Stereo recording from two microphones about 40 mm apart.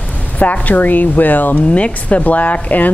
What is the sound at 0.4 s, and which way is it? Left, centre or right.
Speech, left.